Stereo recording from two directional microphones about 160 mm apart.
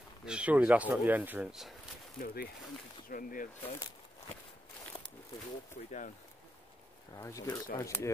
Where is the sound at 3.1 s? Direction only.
60° left (ahead or behind).